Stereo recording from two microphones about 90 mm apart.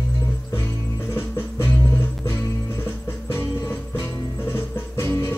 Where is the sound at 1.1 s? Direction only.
30° left (ahead or behind).